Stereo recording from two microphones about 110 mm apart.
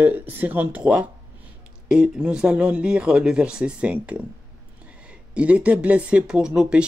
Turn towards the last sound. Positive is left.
turn(degrees=-10)  # may be behind; listen again after turning